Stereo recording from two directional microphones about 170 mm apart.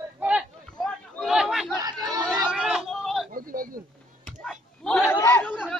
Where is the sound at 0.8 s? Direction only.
Centre (ahead or behind).